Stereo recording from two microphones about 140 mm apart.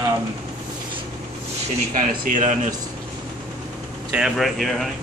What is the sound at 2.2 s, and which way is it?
Speech, 65° right (ahead or behind).